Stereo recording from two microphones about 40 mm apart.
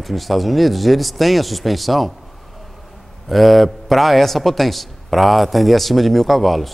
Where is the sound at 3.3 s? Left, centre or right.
Centre.